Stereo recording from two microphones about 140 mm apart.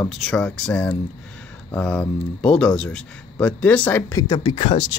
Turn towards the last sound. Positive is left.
turn(degrees=40)  # may be behind; listen again after turning